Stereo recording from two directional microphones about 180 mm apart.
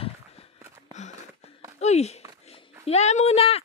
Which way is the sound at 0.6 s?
15° right (ahead or behind).